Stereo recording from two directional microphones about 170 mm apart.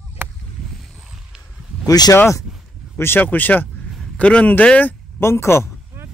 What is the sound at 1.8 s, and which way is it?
A man's voice, 20° left (ahead or behind).